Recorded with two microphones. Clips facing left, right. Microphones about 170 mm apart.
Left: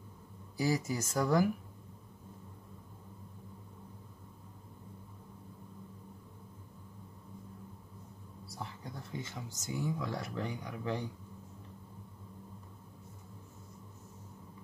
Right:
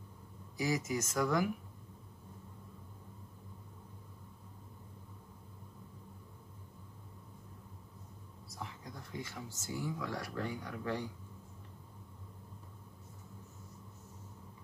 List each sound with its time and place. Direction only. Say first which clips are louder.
0.6 s speech: left 2 dB; 35° left (ahead or behind)
8.5 s speech: left 2 dB; 30° left (ahead or behind)